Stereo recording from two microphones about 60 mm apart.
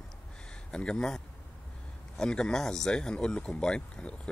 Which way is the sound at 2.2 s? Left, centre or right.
Centre.